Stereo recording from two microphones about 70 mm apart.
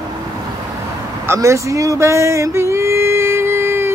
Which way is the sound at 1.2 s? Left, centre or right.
Right.